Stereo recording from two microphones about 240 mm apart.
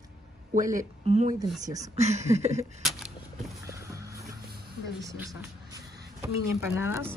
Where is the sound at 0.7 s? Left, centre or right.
Right.